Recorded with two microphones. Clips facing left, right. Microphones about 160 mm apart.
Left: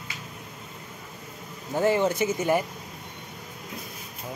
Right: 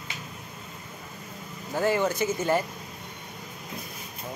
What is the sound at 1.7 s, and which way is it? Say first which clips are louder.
Speech: left 2 dB; 20° left (ahead or behind).